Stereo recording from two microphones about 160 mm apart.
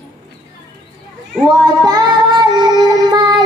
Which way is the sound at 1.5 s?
25° right (ahead or behind).